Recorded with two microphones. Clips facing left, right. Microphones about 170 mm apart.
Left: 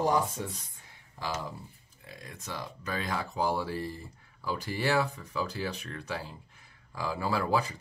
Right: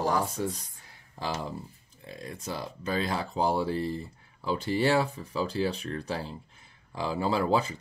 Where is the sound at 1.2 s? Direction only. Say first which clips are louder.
Right 3 dB; 30° right (ahead or behind).